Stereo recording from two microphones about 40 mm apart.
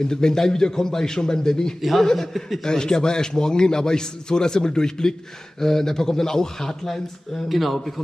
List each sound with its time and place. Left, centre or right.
0.1 s a man's voice: centre
1.8 s a man's voice: centre
7.4 s a man's voice: centre